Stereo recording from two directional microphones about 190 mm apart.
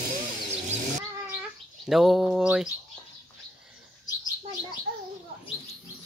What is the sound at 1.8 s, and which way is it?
Speech, centre (ahead or behind).